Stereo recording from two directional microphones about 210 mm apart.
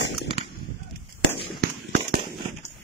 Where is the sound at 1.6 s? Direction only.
45° right (ahead or behind).